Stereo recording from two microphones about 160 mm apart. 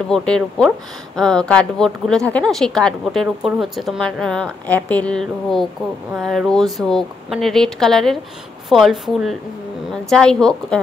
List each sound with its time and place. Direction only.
0.1 s a woman's voice: 5° left (ahead or behind)